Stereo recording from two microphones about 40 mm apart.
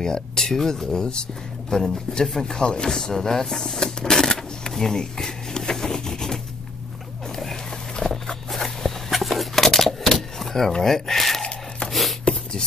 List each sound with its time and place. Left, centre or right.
0.0 s speech: centre
7.9 s walk: centre
8.5 s a sound: centre